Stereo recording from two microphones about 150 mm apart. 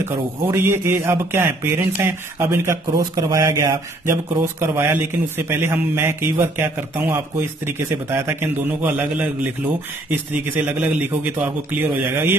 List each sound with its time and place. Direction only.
0.0 s speech: 15° right (ahead or behind)